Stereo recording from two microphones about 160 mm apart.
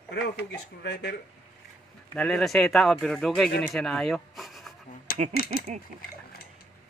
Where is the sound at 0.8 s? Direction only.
90° left.